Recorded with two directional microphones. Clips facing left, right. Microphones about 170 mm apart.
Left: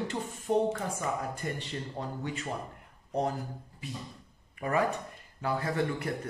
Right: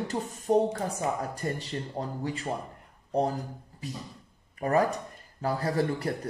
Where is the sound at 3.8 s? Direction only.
40° right (ahead or behind).